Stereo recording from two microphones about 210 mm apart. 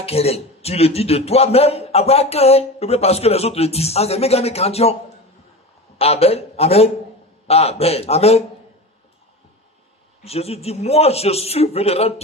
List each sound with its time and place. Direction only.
0.0 s speech: 30° left (ahead or behind)
5.9 s a man's voice: 30° left (ahead or behind)
10.2 s speech: 30° left (ahead or behind)